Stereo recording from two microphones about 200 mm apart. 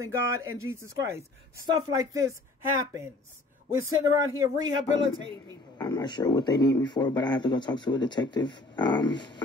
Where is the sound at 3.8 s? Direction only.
15° right (ahead or behind).